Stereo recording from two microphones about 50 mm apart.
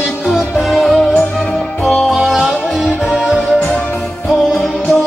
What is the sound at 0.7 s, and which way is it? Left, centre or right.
Music, centre.